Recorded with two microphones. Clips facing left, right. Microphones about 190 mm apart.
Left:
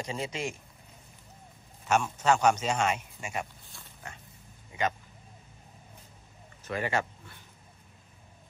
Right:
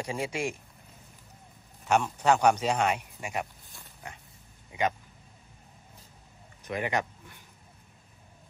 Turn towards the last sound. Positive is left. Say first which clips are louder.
# even
turn(degrees=-15)  # may be behind; listen again after turning